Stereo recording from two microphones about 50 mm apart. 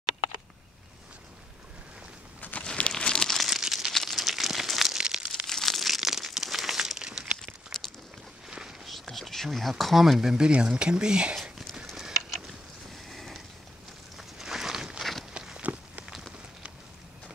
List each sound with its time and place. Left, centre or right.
2.6 s crumpling: centre
3.3 s crumpling: centre
5.0 s crumpling: centre
5.5 s crumpling: centre
8.5 s a sound: centre
9.0 s speech: centre
10.3 s speech: centre
11.3 s a sound: centre
12.9 s mechanisms: centre
14.1 s walk: centre
15.6 s a sound: right